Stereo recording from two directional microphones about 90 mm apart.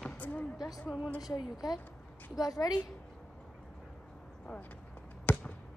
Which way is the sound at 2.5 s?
45° left (ahead or behind).